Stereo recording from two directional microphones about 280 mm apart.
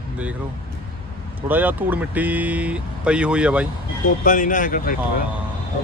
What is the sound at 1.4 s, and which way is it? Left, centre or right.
Speech, centre.